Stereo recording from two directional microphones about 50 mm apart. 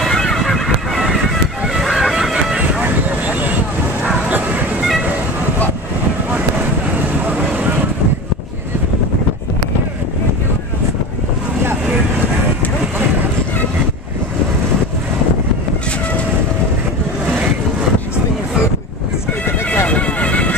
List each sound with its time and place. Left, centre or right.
0.0 s a sound: centre
1.8 s music: centre
2.8 s vehicle: right
7.2 s vehicle: right
19.9 s music: left